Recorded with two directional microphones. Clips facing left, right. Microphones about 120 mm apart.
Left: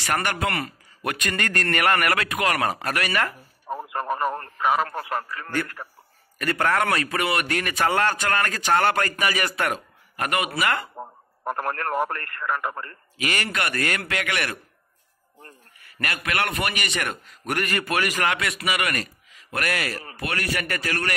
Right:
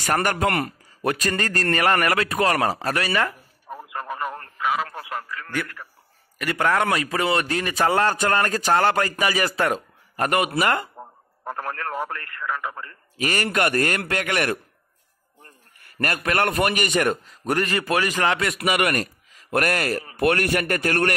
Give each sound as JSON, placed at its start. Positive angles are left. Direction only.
{"t": 0.0, "sound": "a man's voice", "side_deg": -40}
{"t": 1.0, "sound": "a man's voice", "side_deg": -35}
{"t": 3.6, "sound": "radio", "side_deg": 45}
{"t": 6.3, "sound": "a man's voice", "side_deg": -15}
{"t": 8.7, "sound": "a man's voice", "side_deg": -20}
{"t": 10.1, "sound": "a man's voice", "side_deg": -40}
{"t": 11.0, "sound": "a sound", "side_deg": 55}
{"t": 11.4, "sound": "a man's voice", "side_deg": 55}
{"t": 13.2, "sound": "a man's voice", "side_deg": -40}
{"t": 16.0, "sound": "a man's voice", "side_deg": -40}
{"t": 18.5, "sound": "a man's voice", "side_deg": -45}